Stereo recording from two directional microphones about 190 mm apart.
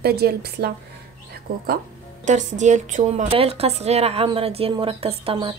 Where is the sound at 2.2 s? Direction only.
40° right (ahead or behind).